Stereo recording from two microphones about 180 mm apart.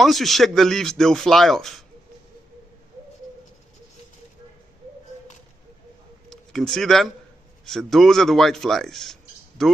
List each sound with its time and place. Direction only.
0.0 s speech: centre (ahead or behind)
6.3 s speech: 5° left (ahead or behind)